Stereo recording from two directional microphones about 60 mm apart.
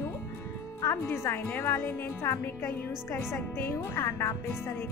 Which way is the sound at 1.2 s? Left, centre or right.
Left.